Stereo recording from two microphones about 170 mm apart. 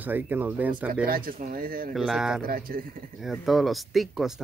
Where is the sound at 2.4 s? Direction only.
60° right (ahead or behind).